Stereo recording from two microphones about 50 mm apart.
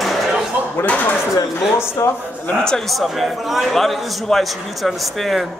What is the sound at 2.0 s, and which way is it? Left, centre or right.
Speech, left.